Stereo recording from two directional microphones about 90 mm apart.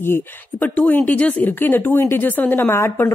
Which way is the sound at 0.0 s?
25° left (ahead or behind).